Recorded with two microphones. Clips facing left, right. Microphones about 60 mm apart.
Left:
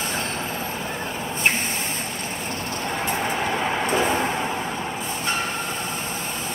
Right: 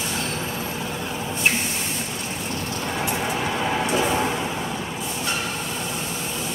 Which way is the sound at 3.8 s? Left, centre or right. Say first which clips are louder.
Left 1 dB; left.